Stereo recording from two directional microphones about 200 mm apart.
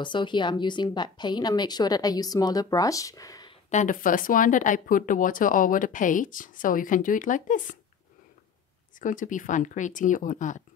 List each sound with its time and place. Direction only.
0.0 s a woman's voice: 25° left (ahead or behind)
3.7 s speech: 40° left (ahead or behind)
9.0 s speech: 40° left (ahead or behind)